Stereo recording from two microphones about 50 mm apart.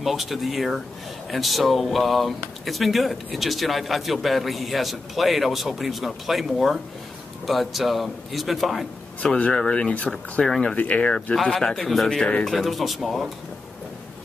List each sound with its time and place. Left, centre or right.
0.0 s speech: centre
9.2 s speech: centre
10.8 s speech: left
11.4 s speech: centre